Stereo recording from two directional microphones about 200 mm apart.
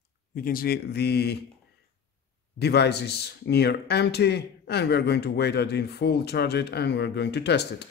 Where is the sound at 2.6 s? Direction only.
55° left (ahead or behind).